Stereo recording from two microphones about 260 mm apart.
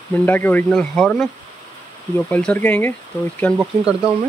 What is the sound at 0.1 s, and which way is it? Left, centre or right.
Speech, centre.